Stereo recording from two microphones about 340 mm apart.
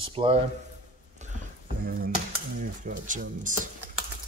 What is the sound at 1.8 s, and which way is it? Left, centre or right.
Speech, right.